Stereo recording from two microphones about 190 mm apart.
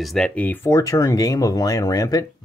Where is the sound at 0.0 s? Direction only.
Centre (ahead or behind).